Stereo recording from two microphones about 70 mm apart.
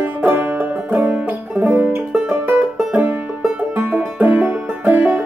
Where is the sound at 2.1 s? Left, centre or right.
Centre.